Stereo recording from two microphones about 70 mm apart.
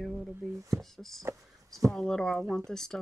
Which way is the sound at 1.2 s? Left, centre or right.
Right.